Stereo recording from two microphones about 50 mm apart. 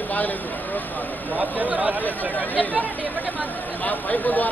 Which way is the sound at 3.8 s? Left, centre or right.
Left.